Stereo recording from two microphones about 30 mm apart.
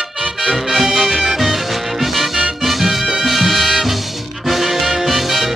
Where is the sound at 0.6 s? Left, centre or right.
Centre.